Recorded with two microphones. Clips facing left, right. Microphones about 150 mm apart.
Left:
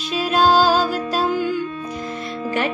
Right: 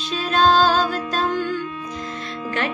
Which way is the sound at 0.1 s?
10° left (ahead or behind).